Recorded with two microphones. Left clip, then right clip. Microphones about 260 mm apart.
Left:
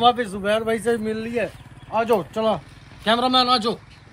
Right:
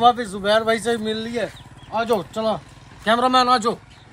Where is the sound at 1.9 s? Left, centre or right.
Centre.